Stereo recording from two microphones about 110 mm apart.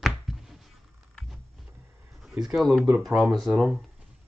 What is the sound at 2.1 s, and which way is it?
Speech, centre (ahead or behind).